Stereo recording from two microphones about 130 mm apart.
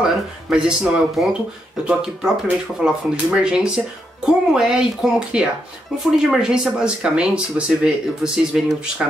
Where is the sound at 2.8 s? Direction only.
5° right (ahead or behind).